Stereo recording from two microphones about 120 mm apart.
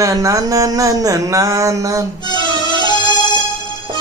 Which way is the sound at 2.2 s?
35° left (ahead or behind).